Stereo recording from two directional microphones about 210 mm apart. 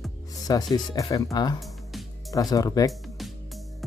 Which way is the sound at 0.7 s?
15° left (ahead or behind).